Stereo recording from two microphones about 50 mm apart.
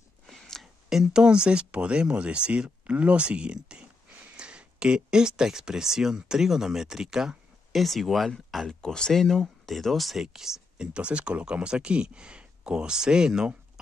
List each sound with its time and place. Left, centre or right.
0.3 s a sound: centre
0.8 s speech: centre; by 3.5 s right
3.5 s a sound: centre
4.4 s speech: centre
7.8 s speech: centre
10.9 s speech: right